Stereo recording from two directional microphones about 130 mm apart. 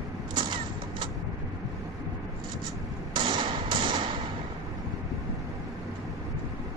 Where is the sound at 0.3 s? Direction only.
35° right (ahead or behind).